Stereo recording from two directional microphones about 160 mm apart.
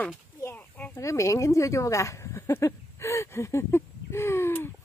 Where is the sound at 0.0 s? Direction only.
15° left (ahead or behind).